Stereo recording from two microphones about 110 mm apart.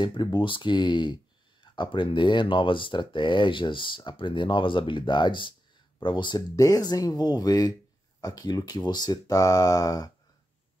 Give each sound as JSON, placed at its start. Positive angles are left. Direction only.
{"t": 0.0, "sound": "speech", "side_deg": 45}